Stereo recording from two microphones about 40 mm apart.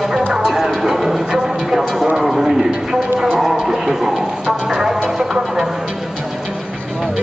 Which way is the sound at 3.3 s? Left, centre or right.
Centre.